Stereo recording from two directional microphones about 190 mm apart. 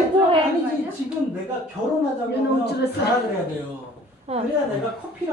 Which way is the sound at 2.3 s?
60° left (ahead or behind).